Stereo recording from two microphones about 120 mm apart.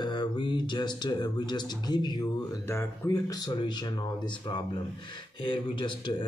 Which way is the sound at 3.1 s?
35° left (ahead or behind).